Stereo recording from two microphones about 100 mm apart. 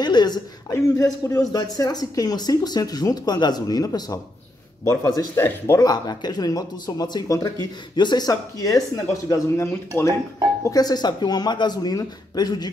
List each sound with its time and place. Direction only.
0.0 s a woman's voice: 45° left (ahead or behind); by 10.1 s 25° left (ahead or behind)
10.6 s speech: 40° left (ahead or behind)